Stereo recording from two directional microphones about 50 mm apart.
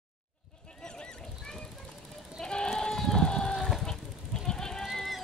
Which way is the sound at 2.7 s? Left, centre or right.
Centre.